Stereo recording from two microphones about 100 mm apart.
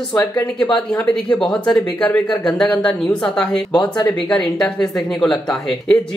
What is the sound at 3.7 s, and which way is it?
Speech, 40° left (ahead or behind).